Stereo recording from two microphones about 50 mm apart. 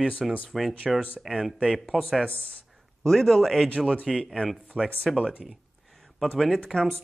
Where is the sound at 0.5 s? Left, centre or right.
Centre.